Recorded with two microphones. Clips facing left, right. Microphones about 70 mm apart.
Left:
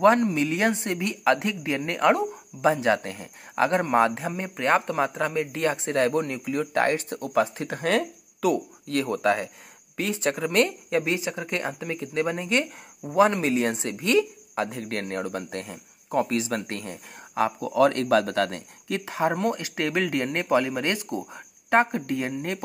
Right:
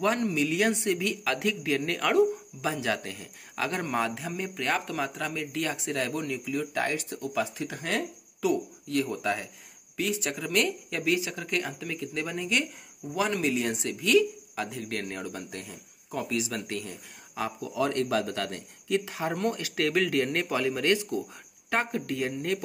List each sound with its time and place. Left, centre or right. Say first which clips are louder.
0.0 s speech: left 7 dB; left
9.9 s speech: left 4 dB; left
15.1 s speech: left 7 dB; left
19.0 s speech: left 7 dB; left
19.3 s speech: left 3 dB; left